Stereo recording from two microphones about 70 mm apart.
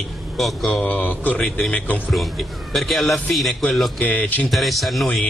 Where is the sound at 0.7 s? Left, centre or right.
Centre.